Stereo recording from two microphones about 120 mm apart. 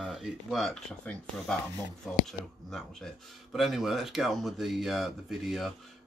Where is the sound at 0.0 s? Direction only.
Centre (ahead or behind).